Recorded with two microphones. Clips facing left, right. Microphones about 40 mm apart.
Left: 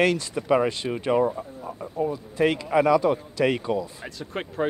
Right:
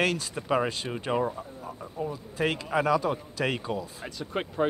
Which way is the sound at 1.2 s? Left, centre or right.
Centre.